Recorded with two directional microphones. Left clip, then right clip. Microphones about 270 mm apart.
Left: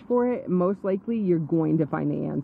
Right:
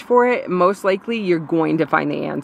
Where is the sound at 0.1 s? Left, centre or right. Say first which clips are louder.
Right 9 dB; centre.